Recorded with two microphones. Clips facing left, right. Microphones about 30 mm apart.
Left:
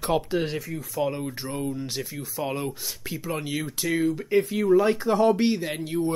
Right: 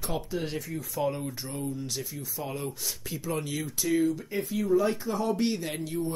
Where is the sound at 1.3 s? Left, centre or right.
Left.